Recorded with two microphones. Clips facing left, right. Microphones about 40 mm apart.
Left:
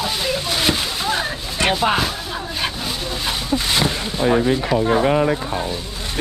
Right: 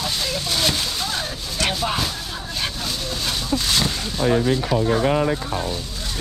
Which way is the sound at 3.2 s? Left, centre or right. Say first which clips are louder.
Left 2 dB; left.